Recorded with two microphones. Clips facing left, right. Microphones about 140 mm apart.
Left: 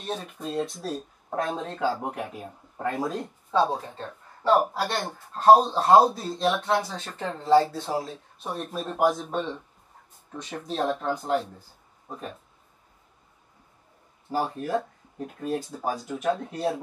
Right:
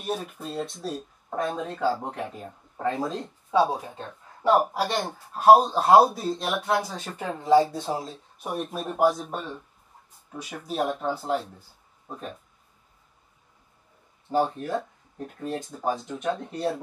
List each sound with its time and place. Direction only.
0.0 s speech: 10° right (ahead or behind)
1.8 s speech: 10° left (ahead or behind)
3.5 s speech: 10° right (ahead or behind)
14.3 s speech: 5° left (ahead or behind)